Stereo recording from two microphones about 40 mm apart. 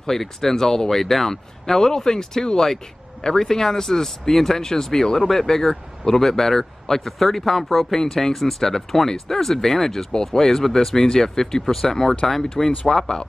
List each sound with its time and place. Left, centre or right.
0.2 s speech: centre
7.7 s speech: centre
8.0 s speech: centre